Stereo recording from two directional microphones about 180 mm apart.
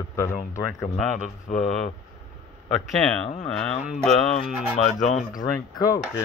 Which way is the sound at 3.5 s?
Centre (ahead or behind).